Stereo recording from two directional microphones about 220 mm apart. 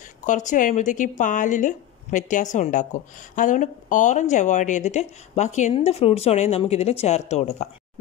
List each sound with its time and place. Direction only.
0.3 s speech: 35° left (ahead or behind)